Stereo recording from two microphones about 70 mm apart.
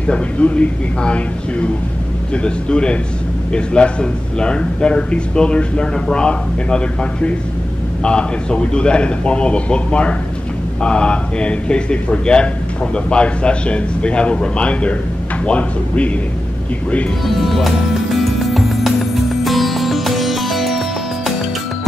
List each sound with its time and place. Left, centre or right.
0.0 s a man's voice: centre
17.5 s music: centre